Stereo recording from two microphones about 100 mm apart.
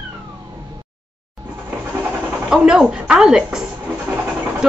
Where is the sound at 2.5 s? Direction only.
10° right (ahead or behind).